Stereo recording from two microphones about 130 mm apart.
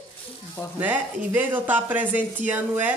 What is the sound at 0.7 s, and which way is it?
Speech, 15° right (ahead or behind).